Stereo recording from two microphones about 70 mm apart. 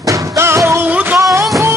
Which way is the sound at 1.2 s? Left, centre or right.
Right.